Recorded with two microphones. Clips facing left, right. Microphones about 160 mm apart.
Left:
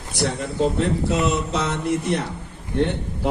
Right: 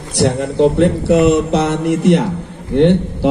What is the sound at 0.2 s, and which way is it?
A man's voice, 75° right (ahead or behind).